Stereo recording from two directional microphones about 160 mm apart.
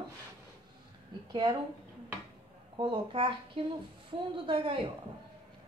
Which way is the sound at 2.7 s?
30° right (ahead or behind).